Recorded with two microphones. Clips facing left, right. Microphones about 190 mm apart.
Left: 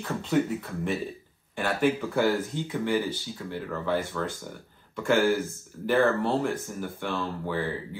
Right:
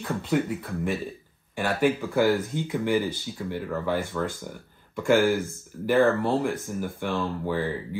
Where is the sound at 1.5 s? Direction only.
10° right (ahead or behind).